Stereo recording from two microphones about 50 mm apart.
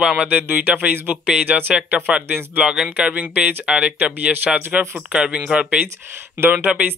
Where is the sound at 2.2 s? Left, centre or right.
Right.